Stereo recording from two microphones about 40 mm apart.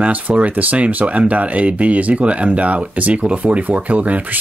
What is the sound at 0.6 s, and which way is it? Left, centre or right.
Speech, right.